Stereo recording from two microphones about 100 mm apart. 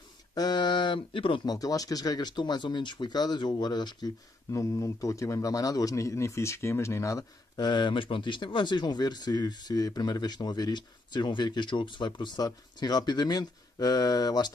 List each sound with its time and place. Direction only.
0.3 s speech: 45° left (ahead or behind); by 1.4 s 60° left (ahead or behind)
1.4 s a man's voice: 40° left (ahead or behind)
4.5 s a man's voice: 30° left (ahead or behind)